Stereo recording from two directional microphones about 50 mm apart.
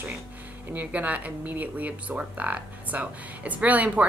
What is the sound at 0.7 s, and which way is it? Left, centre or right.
Speech, right.